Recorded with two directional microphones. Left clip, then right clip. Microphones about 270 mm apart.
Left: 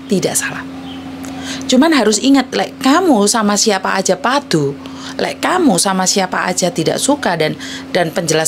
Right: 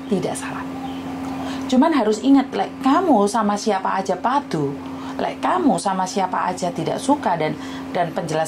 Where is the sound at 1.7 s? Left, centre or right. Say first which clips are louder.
Left 6 dB; left.